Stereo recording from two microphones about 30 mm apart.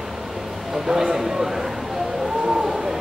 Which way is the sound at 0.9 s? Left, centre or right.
Centre.